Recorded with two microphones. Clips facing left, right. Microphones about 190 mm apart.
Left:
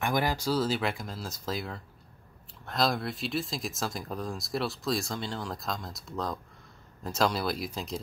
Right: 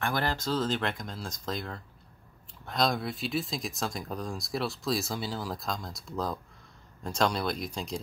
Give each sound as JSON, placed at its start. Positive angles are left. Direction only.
{"t": 0.0, "sound": "speech", "side_deg": 15}